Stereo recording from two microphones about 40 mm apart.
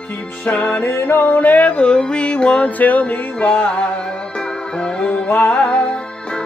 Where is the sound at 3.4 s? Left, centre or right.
Left.